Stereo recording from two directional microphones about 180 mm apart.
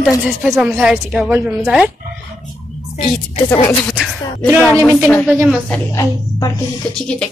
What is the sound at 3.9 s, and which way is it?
A woman's voice, centre (ahead or behind).